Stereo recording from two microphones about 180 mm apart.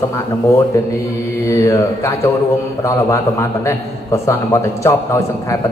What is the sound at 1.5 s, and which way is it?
A man's voice, 15° left (ahead or behind).